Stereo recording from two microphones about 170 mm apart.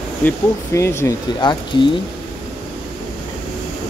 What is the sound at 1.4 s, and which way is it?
Speech, 25° left (ahead or behind).